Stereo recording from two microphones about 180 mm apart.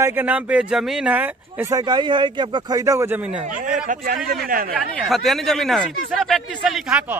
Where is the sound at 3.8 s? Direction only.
55° right (ahead or behind).